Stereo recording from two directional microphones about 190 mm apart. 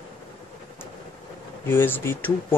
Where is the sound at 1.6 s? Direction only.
10° left (ahead or behind).